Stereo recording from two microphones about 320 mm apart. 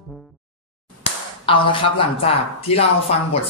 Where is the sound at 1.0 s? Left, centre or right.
Centre.